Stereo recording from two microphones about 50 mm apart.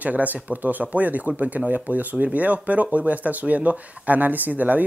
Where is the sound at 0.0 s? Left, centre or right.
Right.